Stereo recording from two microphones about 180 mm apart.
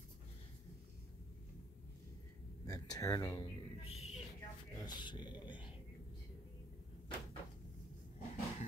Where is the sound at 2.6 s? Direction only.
20° left (ahead or behind).